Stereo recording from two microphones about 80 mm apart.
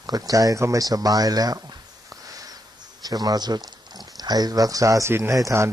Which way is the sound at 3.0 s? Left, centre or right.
Right.